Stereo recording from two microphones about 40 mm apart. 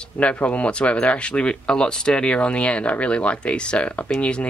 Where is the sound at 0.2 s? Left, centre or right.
Left.